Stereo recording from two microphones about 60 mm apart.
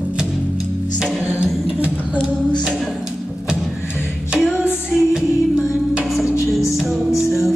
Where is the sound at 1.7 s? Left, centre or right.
Centre.